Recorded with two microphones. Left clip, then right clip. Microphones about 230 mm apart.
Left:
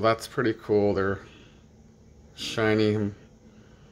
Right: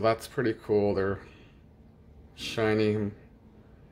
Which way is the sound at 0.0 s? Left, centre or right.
Centre.